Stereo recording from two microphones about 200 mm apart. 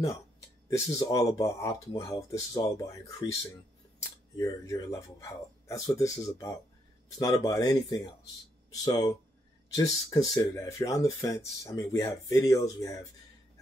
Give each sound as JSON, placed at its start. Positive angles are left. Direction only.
{"t": 0.7, "sound": "speech", "side_deg": 15}
{"t": 4.4, "sound": "speech", "side_deg": 15}
{"t": 9.8, "sound": "speech", "side_deg": 15}